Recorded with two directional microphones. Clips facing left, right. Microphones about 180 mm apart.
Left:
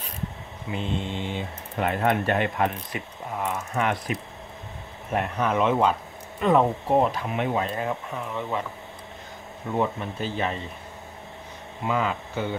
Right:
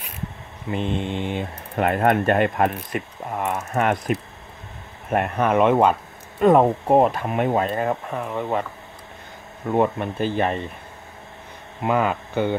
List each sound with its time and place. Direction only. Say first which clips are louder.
0.7 s speech: right 5 dB; 55° right (ahead or behind)
6.4 s speech: right 5 dB; 45° right (ahead or behind)
9.7 s speech: right 6 dB; 55° right (ahead or behind)
11.8 s speech: right 5 dB; 60° right (ahead or behind)